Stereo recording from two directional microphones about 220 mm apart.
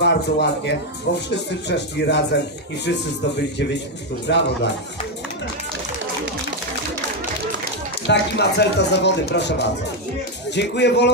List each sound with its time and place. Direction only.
0.0 s speech: 50° left (ahead or behind)
8.1 s speech: 50° left (ahead or behind)